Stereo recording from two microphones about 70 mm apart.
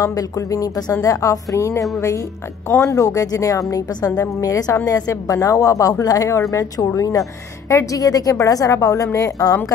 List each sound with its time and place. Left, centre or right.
0.0 s a woman's voice: left
2.9 s a woman's voice: left